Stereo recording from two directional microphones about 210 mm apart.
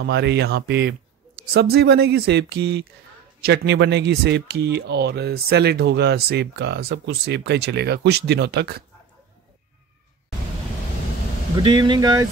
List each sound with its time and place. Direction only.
0.0 s speech: 55° right (ahead or behind)
11.5 s speech: 20° right (ahead or behind)